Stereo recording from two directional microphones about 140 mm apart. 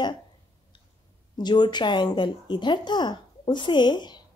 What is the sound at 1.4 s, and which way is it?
A woman's voice, 30° left (ahead or behind).